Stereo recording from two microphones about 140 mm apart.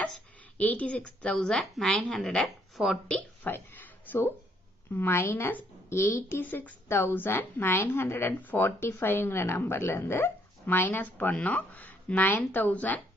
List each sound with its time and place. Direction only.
0.6 s a woman's voice: 10° left (ahead or behind)
3.1 s a sound: 15° left (ahead or behind)
4.9 s a woman's voice: 15° left (ahead or behind)